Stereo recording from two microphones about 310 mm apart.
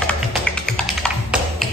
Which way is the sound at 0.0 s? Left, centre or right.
Centre.